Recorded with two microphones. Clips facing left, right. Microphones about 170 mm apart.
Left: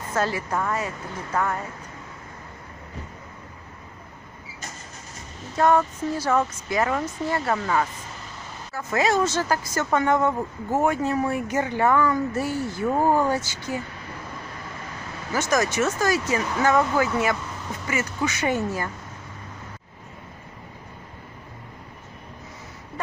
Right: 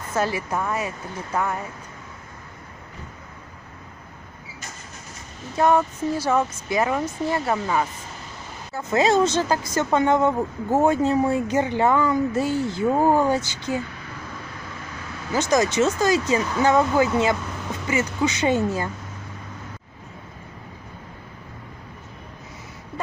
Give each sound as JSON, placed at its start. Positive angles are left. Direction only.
{"t": 0.1, "sound": "speech", "side_deg": -15}
{"t": 5.6, "sound": "speech", "side_deg": -10}
{"t": 15.3, "sound": "speech", "side_deg": -15}